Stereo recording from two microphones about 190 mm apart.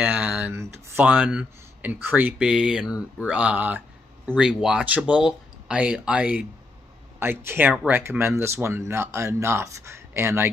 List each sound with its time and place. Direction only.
0.0 s speech: 5° right (ahead or behind)